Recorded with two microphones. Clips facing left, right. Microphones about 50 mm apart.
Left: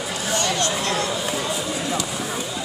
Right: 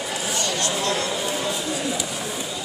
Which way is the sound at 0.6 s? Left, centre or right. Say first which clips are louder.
Left 1 dB; left.